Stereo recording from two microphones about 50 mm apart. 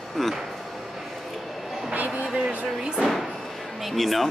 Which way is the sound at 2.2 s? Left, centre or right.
Centre.